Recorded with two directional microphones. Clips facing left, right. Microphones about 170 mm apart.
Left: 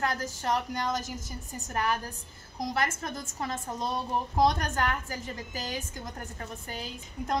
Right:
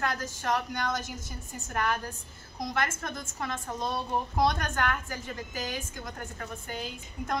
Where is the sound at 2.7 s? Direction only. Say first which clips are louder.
Even; 40° left (ahead or behind).